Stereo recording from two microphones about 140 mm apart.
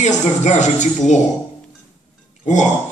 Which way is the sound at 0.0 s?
60° left (ahead or behind).